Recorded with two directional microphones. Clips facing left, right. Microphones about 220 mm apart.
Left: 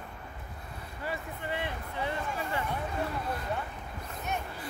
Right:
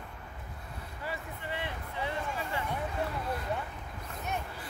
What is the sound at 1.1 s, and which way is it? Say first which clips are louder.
Vehicle: left 3 dB; 50° left (ahead or behind).